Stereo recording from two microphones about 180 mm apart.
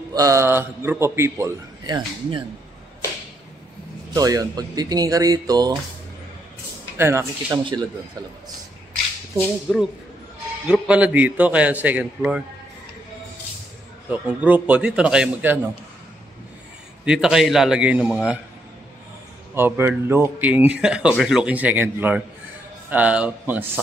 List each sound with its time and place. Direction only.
0.1 s a man's voice: 20° right (ahead or behind)
4.1 s speech: 20° right (ahead or behind)
7.0 s a man's voice: 15° right (ahead or behind)
9.7 s a man's voice: centre (ahead or behind)
14.1 s a man's voice: 10° right (ahead or behind)
17.0 s a man's voice: 5° right (ahead or behind)
19.5 s a man's voice: 10° right (ahead or behind)